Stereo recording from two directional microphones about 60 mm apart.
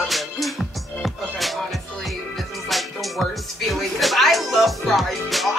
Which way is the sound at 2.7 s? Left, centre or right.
Centre.